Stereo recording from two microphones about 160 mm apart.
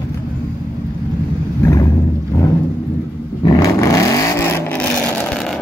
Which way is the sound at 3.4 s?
20° left (ahead or behind).